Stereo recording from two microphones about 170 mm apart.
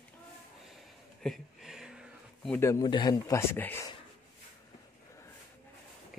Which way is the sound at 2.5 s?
20° left (ahead or behind).